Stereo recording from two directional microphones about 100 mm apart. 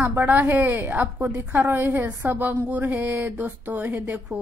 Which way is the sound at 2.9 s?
15° right (ahead or behind).